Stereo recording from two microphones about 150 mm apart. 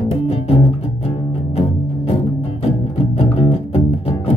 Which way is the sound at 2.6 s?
40° left (ahead or behind).